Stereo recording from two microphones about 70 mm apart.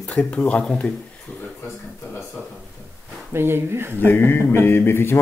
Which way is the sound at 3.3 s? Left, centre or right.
Right.